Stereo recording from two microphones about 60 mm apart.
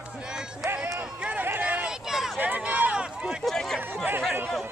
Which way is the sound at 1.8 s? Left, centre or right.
Centre.